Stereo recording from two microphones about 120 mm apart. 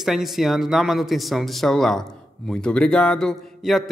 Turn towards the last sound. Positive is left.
turn(degrees=0)  # may be behind; listen again after turning